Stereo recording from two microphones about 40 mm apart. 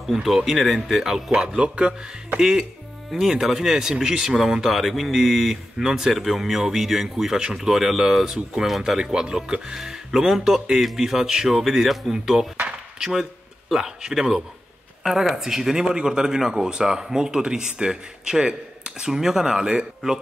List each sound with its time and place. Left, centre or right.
0.0 s speech: centre
1.3 s speech: right
3.1 s speech: centre
15.3 s speech: centre